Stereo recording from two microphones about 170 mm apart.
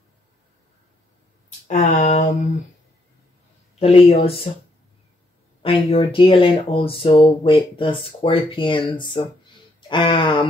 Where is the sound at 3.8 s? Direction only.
35° left (ahead or behind).